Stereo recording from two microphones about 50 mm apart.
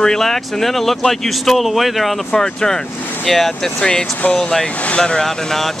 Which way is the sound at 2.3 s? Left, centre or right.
Centre.